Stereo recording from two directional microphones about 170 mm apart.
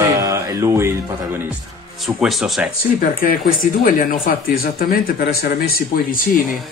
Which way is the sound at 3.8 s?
55° left (ahead or behind).